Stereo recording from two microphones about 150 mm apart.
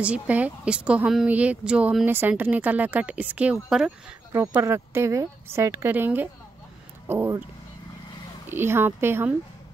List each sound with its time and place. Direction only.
0.0 s a woman's voice: 10° right (ahead or behind)
8.5 s a woman's voice: 15° right (ahead or behind)